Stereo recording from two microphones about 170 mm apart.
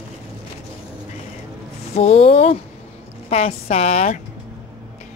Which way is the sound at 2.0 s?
40° left (ahead or behind).